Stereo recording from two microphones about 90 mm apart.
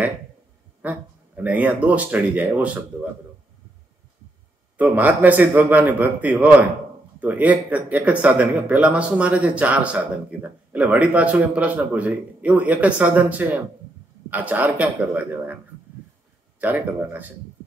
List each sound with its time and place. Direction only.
0.8 s speech: 15° right (ahead or behind)
4.9 s a man's voice: 20° right (ahead or behind)